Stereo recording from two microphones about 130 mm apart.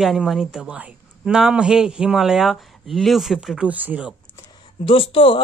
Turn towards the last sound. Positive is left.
turn(degrees=45)  # may be behind; listen again after turning